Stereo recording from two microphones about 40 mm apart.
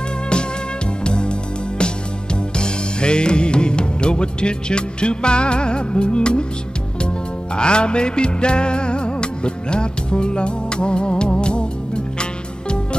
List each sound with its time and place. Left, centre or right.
1.0 s music: left
2.5 s music: left
7.5 s music: left